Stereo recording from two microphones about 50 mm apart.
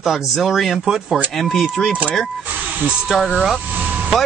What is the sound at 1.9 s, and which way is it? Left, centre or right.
Speech, right.